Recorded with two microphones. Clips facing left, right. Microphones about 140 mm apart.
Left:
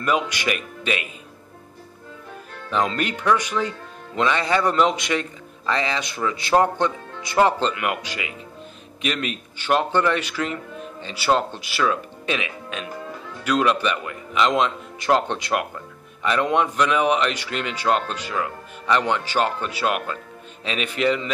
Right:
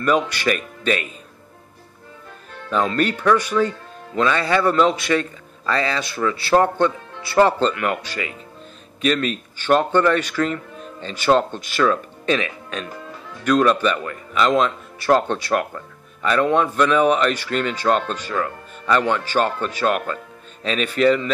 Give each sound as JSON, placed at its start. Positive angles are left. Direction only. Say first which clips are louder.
{"t": 0.0, "sound": "speech", "louder": "right 4 dB", "side_deg": 15}
{"t": 2.7, "sound": "speech", "louder": "right 3 dB", "side_deg": 15}